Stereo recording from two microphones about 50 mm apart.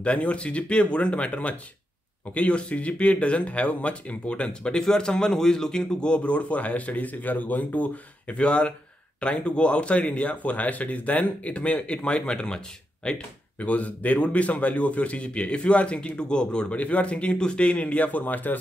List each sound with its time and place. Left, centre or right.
0.0 s speech: left
13.6 s speech: left